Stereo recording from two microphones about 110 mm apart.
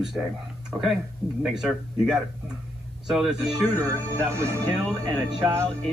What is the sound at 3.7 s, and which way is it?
Speech, 25° right (ahead or behind).